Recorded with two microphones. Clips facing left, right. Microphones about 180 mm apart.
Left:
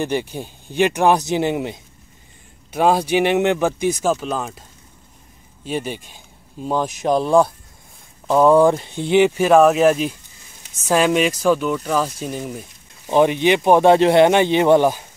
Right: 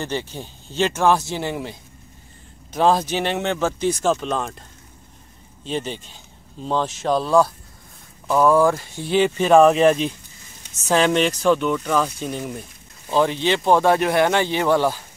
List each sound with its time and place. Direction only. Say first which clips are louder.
0.0 s speech: left 5 dB; 15° left (ahead or behind)
13.0 s speech: left 4 dB; 15° left (ahead or behind)